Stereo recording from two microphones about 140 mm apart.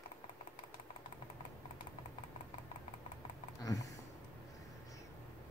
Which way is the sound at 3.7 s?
25° left (ahead or behind).